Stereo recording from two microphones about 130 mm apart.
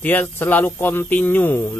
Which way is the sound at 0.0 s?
15° left (ahead or behind).